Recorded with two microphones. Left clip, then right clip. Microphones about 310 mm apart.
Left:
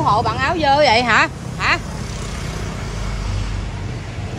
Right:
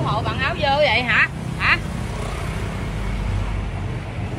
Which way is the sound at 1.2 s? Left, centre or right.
Centre.